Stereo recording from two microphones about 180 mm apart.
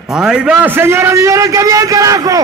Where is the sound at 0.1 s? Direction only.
5° right (ahead or behind).